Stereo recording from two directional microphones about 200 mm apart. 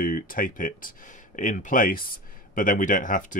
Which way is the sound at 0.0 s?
45° left (ahead or behind).